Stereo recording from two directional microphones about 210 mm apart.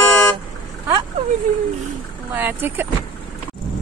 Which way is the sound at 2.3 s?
10° right (ahead or behind).